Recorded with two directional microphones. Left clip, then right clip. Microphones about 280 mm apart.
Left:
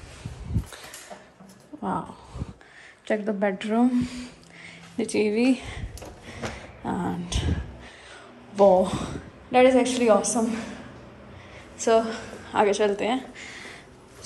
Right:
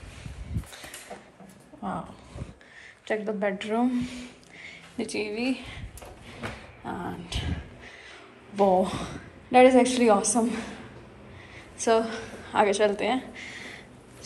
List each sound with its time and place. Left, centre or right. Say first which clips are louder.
1.8 s speech: left 5 dB; centre
3.1 s a woman's voice: left 3 dB; centre
6.2 s cat: left 3 dB; centre
8.5 s a woman's voice: left 4 dB; centre
11.8 s a sound: left 2 dB; centre